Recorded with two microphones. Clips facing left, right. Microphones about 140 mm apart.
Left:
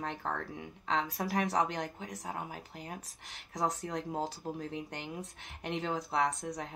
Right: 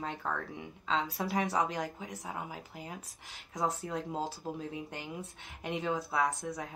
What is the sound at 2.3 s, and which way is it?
Speech, 15° right (ahead or behind).